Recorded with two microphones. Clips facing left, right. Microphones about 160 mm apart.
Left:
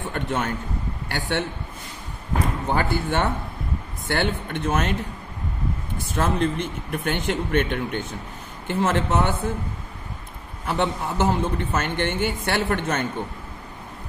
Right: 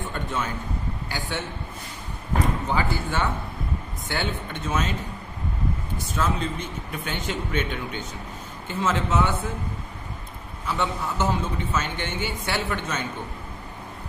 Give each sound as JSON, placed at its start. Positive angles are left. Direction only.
{"t": 0.1, "sound": "a man's voice", "side_deg": 65}
{"t": 2.7, "sound": "a man's voice", "side_deg": 60}
{"t": 6.1, "sound": "a man's voice", "side_deg": 55}
{"t": 10.6, "sound": "a man's voice", "side_deg": 60}